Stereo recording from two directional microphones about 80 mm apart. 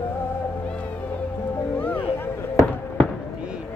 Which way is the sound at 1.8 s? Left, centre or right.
Left.